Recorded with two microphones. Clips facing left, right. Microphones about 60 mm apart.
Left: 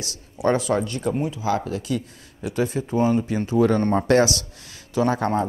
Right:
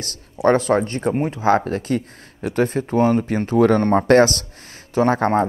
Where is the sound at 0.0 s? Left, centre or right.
Right.